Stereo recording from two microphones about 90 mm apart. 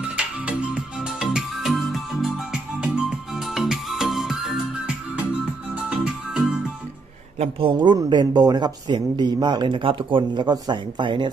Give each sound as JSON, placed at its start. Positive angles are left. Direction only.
{"t": 0.2, "sound": "music", "side_deg": -15}
{"t": 2.3, "sound": "music", "side_deg": -15}
{"t": 7.5, "sound": "speech", "side_deg": -85}
{"t": 7.9, "sound": "speech", "side_deg": -50}